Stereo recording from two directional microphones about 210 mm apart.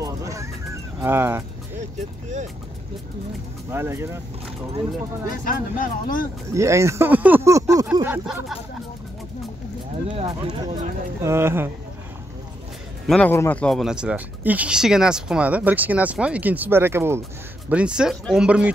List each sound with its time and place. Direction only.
0.0 s horse: 15° right (ahead or behind)
1.0 s speech: 10° right (ahead or behind)
3.7 s speech: 10° right (ahead or behind)
5.3 s speech: 40° left (ahead or behind)
6.5 s speech: 15° right (ahead or behind)
10.1 s speech: 25° right (ahead or behind)
11.2 s speech: 10° right (ahead or behind)
13.0 s speech: 5° left (ahead or behind)